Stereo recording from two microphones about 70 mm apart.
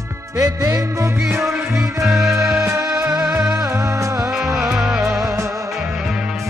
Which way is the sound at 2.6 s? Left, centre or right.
Right.